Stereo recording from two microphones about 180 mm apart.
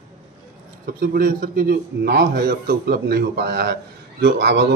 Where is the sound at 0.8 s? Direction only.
55° right (ahead or behind).